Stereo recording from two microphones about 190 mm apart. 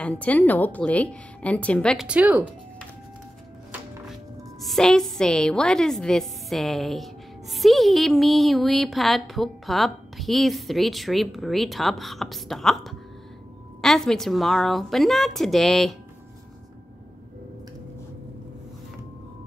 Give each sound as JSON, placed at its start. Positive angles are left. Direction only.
{"t": 0.0, "sound": "a woman's voice", "side_deg": 5}
{"t": 2.0, "sound": "speech", "side_deg": -5}
{"t": 4.1, "sound": "a woman's voice", "side_deg": 0}